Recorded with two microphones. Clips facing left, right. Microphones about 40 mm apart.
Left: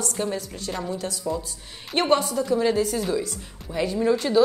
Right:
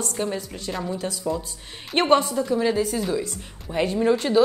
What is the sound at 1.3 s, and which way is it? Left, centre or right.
A woman's voice, right.